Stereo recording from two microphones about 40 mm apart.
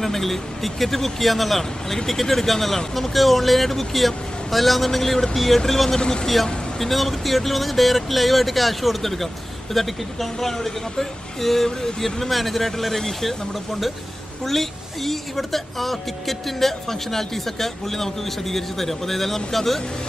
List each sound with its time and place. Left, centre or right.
0.0 s speech: centre
5.9 s speech: left
6.2 s speech: centre